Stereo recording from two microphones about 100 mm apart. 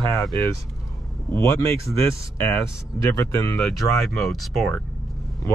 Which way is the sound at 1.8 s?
25° left (ahead or behind).